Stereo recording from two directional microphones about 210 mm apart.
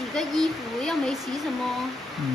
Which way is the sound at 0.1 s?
Centre (ahead or behind).